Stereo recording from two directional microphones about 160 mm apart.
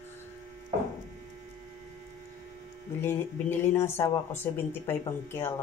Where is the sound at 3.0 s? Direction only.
15° left (ahead or behind).